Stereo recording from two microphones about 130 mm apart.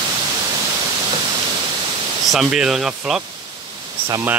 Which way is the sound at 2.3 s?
5° right (ahead or behind).